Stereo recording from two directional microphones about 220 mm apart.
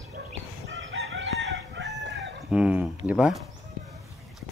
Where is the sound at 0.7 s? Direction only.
55° right (ahead or behind).